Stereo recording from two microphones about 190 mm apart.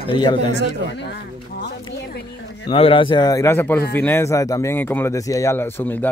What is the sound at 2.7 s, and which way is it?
Speech, 30° left (ahead or behind).